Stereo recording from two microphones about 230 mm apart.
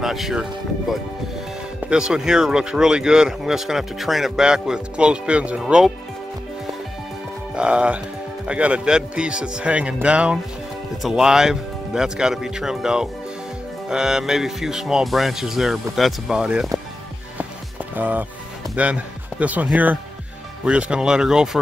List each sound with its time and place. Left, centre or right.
0.0 s speech: centre
7.5 s speech: centre
17.9 s speech: centre